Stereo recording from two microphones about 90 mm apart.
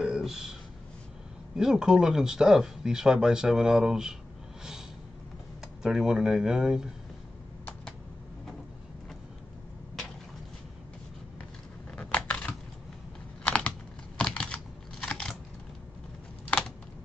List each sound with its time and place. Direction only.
0.0 s a sound: 5° right (ahead or behind)
1.6 s speech: 5° right (ahead or behind)
5.8 s speech: 5° right (ahead or behind)
11.9 s scissors: 15° left (ahead or behind)
13.5 s computer keyboard: 15° left (ahead or behind)
15.0 s a sound: 10° left (ahead or behind)